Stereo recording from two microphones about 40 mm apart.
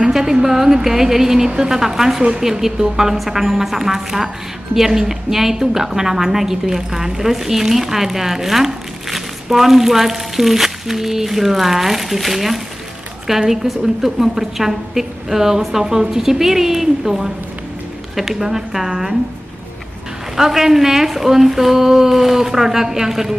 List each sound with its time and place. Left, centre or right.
0.0 s a woman's voice: centre
20.3 s a woman's voice: centre